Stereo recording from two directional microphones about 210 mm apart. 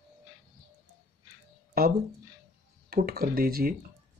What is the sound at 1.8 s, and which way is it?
Speech, 45° right (ahead or behind).